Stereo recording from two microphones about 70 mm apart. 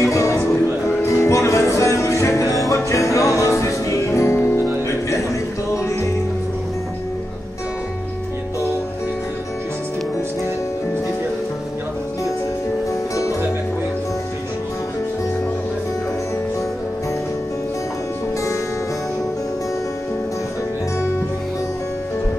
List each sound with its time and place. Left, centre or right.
0.0 s music: left
13.1 s music: left